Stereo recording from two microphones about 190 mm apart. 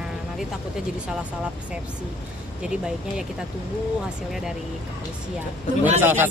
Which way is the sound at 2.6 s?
5° right (ahead or behind).